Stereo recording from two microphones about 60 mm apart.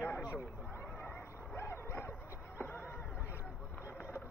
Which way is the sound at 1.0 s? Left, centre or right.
Left.